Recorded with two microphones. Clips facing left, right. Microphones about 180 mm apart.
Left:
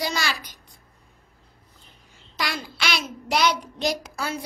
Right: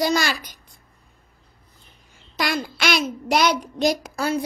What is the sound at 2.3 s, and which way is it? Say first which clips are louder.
Child singing: right 6 dB; 50° right (ahead or behind).